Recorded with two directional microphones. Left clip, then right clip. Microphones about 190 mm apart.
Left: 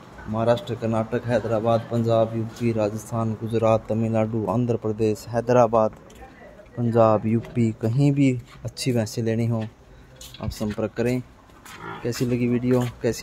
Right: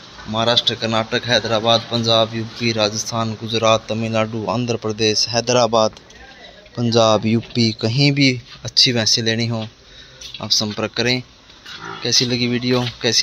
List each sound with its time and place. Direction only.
0.3 s speech: centre (ahead or behind)
3.9 s speech: 5° left (ahead or behind)
5.3 s speech: 10° right (ahead or behind)
7.9 s speech: centre (ahead or behind)